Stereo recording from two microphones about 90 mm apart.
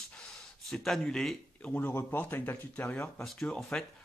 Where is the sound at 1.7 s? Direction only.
20° left (ahead or behind).